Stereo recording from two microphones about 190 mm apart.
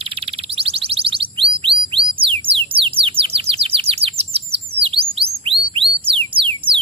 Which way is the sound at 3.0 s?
30° right (ahead or behind).